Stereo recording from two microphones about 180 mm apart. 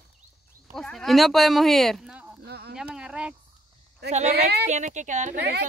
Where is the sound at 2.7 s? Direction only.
5° right (ahead or behind).